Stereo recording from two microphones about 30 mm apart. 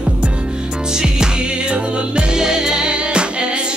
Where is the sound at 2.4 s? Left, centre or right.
Right.